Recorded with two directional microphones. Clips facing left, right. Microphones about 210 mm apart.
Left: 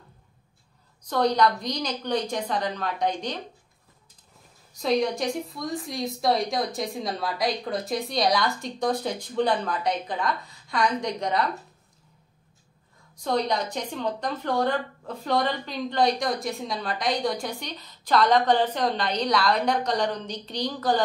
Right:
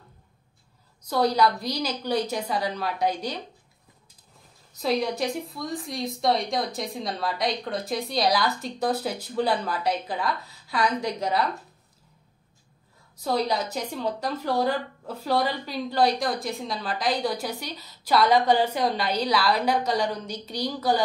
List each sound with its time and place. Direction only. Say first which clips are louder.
1.0 s a woman's voice: even; 5° right (ahead or behind)
4.7 s a woman's voice: left 1 dB; centre (ahead or behind)
13.1 s a woman's voice: even; 5° right (ahead or behind)